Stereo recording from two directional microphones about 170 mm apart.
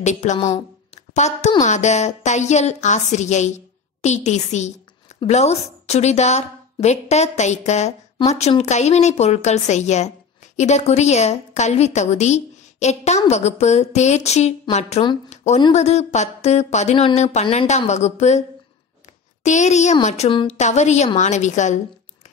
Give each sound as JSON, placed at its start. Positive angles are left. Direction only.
{"t": 0.0, "sound": "a woman's voice", "side_deg": 45}
{"t": 0.5, "sound": "a sound", "side_deg": 40}
{"t": 1.6, "sound": "a woman's voice", "side_deg": 45}
{"t": 19.4, "sound": "a woman's voice", "side_deg": 45}